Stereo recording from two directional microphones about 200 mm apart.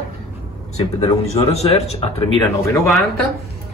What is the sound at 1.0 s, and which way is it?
A man's voice, 30° left (ahead or behind).